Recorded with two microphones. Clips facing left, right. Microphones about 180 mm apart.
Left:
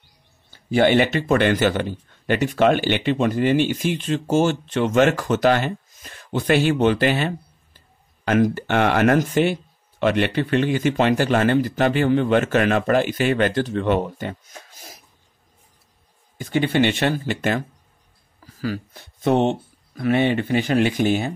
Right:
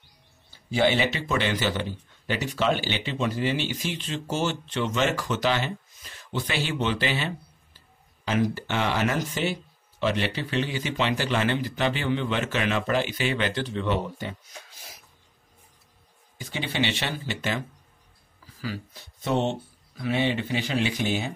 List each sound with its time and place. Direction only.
0.5 s speech: 55° left (ahead or behind)
16.3 s speech: 55° left (ahead or behind)
18.4 s a sound: 50° left (ahead or behind)
20.0 s speech: 55° left (ahead or behind)